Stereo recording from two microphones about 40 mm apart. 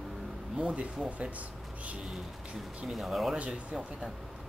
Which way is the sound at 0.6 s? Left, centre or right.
Right.